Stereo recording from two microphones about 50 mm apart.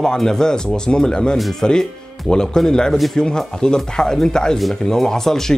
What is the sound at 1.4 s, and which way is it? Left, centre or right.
Speech, centre.